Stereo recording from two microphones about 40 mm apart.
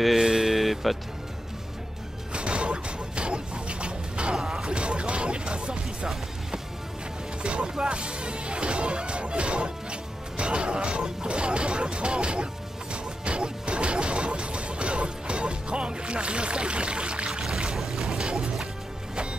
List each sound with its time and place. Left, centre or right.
0.2 s a sound: centre
0.6 s music: centre
2.3 s a sound: right
7.4 s speech: right
12.9 s music: right
17.7 s boat: centre